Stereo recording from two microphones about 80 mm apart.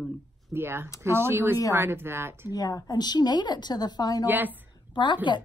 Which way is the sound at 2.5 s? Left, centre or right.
Left.